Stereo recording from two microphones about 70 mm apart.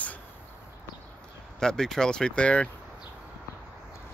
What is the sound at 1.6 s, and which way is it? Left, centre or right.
Speech, centre.